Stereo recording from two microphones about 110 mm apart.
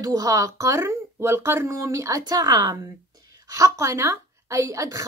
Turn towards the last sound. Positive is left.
turn(degrees=-30)  # may be behind; listen again after turning